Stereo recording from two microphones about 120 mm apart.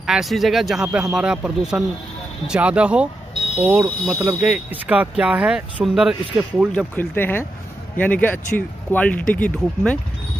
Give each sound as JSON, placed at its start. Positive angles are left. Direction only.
{"t": 0.0, "sound": "speech", "side_deg": -5}
{"t": 7.0, "sound": "speech", "side_deg": 15}